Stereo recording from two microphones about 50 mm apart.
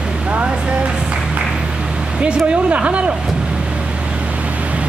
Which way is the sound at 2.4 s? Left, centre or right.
Right.